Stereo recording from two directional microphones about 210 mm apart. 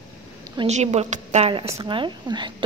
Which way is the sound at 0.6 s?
30° right (ahead or behind).